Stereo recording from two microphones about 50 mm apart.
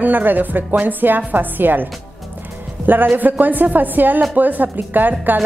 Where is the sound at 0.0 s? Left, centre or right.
Right.